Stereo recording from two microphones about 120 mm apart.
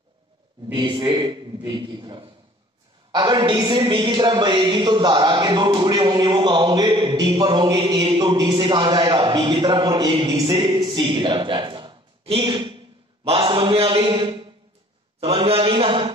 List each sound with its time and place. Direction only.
0.7 s a man's voice: 40° right (ahead or behind)
15.1 s a man's voice: 55° right (ahead or behind)